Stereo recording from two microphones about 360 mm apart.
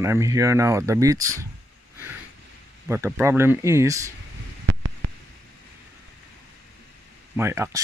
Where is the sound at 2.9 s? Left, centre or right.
Centre.